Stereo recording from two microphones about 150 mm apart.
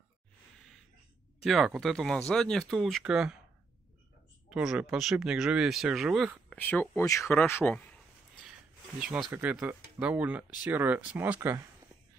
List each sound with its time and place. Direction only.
1.4 s speech: centre (ahead or behind)
4.5 s speech: 5° right (ahead or behind)
6.5 s speech: 10° left (ahead or behind)
9.0 s speech: 5° right (ahead or behind)